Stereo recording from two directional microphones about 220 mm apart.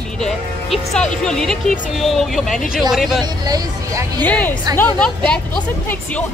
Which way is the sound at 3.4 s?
15° right (ahead or behind).